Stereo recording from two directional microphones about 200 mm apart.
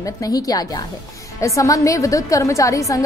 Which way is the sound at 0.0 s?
20° left (ahead or behind).